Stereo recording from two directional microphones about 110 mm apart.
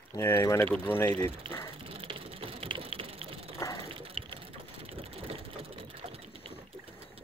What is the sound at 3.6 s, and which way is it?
Water, 25° left (ahead or behind).